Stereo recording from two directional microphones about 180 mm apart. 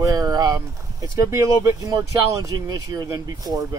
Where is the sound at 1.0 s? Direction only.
15° right (ahead or behind).